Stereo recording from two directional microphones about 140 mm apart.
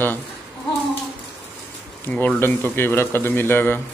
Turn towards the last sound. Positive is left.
turn(degrees=15)  # may be behind; listen again after turning